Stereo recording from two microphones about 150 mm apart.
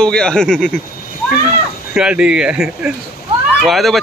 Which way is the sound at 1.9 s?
5° right (ahead or behind).